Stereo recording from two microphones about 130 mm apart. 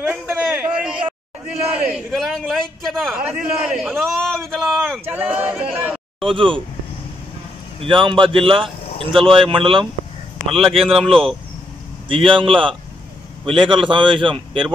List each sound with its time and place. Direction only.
0.5 s a sound: 10° right (ahead or behind)
2.0 s a man's voice: 5° left (ahead or behind)
5.1 s speech: 10° right (ahead or behind)
6.2 s a man's voice: 40° right (ahead or behind)
7.8 s a man's voice: 40° right (ahead or behind)
12.1 s a man's voice: 40° right (ahead or behind)